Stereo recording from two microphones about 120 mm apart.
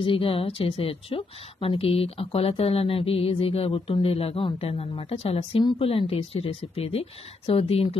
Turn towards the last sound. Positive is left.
turn(degrees=50)  # may be behind; listen again after turning